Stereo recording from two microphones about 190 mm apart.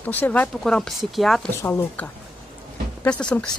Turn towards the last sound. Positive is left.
turn(degrees=5)  # may be behind; listen again after turning